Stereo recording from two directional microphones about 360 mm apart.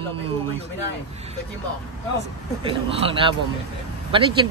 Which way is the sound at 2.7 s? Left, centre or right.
Centre.